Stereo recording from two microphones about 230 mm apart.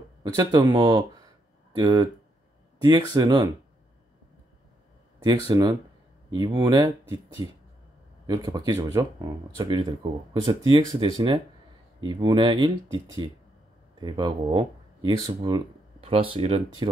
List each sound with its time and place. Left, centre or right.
0.2 s speech: centre
5.5 s speech: centre
8.3 s speech: centre